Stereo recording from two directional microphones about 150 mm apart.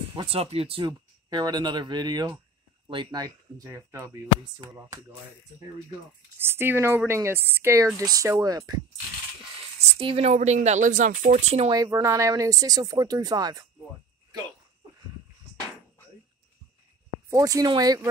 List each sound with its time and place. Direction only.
0.1 s speech: 40° right (ahead or behind); by 4.9 s 20° right (ahead or behind)
6.3 s speech: 15° right (ahead or behind)
9.8 s speech: 40° right (ahead or behind)
11.7 s speech: 20° right (ahead or behind)
17.3 s speech: 20° right (ahead or behind)